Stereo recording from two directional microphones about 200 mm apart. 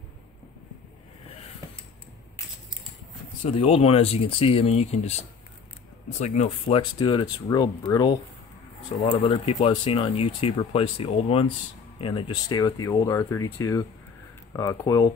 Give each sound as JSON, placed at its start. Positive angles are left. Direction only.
{"t": 3.4, "sound": "speech", "side_deg": 30}
{"t": 6.1, "sound": "speech", "side_deg": 35}
{"t": 6.8, "sound": "speech", "side_deg": 20}